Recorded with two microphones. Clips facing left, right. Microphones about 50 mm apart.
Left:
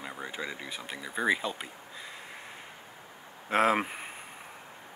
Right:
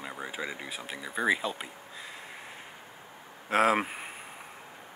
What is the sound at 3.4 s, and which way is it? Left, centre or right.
Speech, centre.